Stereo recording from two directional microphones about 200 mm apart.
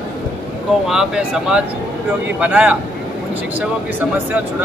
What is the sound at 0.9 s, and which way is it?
Speech, 5° right (ahead or behind).